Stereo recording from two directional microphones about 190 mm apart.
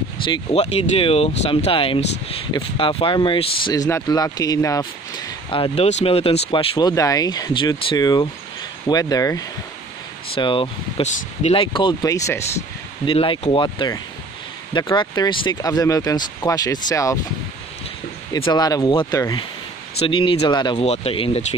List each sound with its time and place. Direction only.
0.3 s speech: 30° left (ahead or behind); by 12.4 s 15° left (ahead or behind)
13.0 s speech: 25° left (ahead or behind)
18.3 s speech: 20° left (ahead or behind)